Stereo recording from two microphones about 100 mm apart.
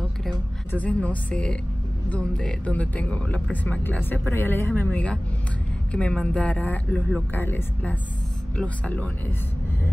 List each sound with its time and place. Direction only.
0.7 s speech: 15° left (ahead or behind)